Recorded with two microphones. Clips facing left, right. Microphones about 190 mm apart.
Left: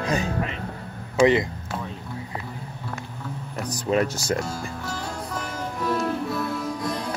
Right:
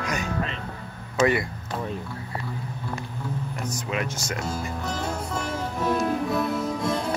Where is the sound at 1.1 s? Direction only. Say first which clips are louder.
Left 4 dB; 20° left (ahead or behind).